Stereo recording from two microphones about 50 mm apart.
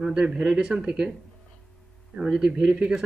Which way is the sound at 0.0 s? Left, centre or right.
Centre.